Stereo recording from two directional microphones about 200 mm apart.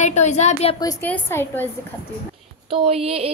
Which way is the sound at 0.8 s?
15° left (ahead or behind).